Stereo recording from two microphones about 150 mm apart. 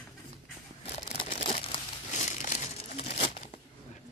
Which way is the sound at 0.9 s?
45° left (ahead or behind).